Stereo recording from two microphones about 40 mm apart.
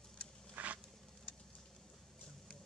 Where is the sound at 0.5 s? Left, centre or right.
Right.